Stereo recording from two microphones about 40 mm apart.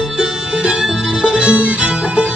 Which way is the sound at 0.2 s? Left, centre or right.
Right.